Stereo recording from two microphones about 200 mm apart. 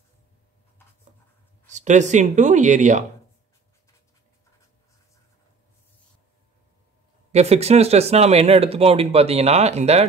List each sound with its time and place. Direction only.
1.7 s speech: 35° right (ahead or behind)
7.3 s speech: 30° right (ahead or behind)